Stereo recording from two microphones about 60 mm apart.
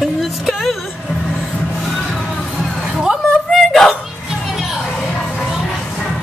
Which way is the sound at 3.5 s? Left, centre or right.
Centre.